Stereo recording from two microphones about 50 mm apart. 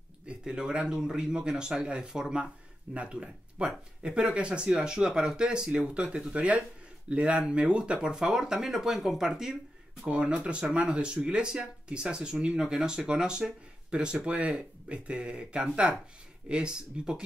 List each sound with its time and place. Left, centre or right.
0.3 s speech: centre
10.0 s speech: right